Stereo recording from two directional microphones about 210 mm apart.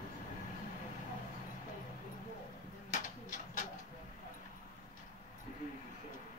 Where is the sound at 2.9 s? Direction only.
35° left (ahead or behind).